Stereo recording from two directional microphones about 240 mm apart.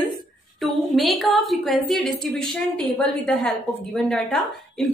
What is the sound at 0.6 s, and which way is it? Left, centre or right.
A woman's voice, centre.